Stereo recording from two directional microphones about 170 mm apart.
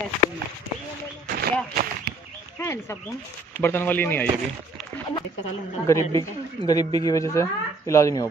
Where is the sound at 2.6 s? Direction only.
15° left (ahead or behind).